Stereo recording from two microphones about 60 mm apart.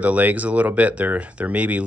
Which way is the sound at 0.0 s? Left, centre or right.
Right.